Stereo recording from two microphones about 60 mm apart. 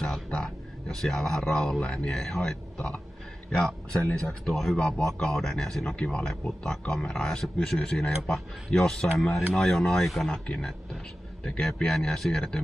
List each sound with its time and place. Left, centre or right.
0.3 s speech: centre
10.4 s speech: centre